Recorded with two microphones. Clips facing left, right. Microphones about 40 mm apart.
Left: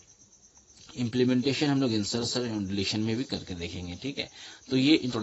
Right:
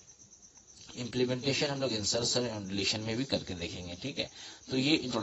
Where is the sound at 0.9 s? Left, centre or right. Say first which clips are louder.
Left 7 dB; centre.